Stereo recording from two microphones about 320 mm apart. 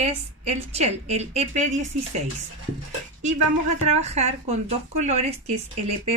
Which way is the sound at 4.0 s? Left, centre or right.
Right.